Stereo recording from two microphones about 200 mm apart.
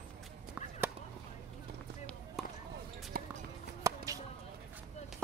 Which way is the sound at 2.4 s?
Centre (ahead or behind).